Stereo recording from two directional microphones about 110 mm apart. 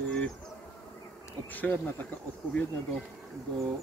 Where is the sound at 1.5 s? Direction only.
15° left (ahead or behind).